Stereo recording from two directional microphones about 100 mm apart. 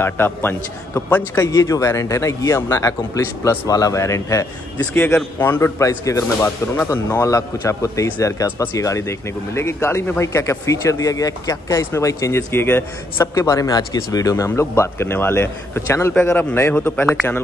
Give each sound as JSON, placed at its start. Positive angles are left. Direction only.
{"t": 0.0, "sound": "a man's voice", "side_deg": 20}
{"t": 5.8, "sound": "speech", "side_deg": 35}
{"t": 14.3, "sound": "a man's voice", "side_deg": 25}
{"t": 16.7, "sound": "a man's voice", "side_deg": 15}